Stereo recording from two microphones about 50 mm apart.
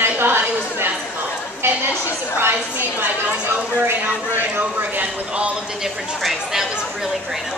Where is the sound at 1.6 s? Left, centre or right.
Right.